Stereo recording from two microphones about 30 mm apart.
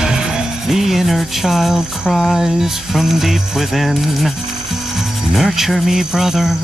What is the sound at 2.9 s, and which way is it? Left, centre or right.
Music, centre.